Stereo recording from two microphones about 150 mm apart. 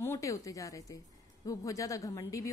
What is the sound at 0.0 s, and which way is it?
A woman's voice, 20° left (ahead or behind).